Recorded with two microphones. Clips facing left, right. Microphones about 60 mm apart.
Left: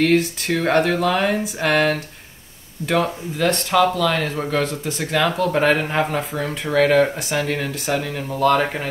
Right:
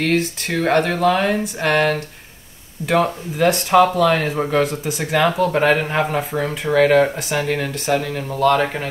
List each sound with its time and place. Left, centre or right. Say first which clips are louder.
0.0 s speech: left 2 dB; centre
3.7 s speech: right 4 dB; centre